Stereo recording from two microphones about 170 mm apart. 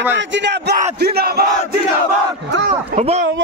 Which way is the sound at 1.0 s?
65° right (ahead or behind).